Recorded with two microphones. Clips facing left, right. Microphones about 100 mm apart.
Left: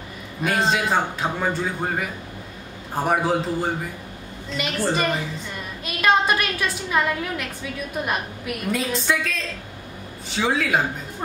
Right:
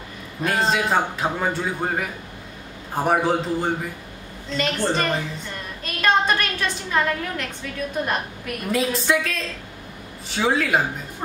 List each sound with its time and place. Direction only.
0.4 s a man's voice: centre (ahead or behind)
5.9 s a sound: 5° left (ahead or behind)
6.9 s a woman's voice: 5° left (ahead or behind)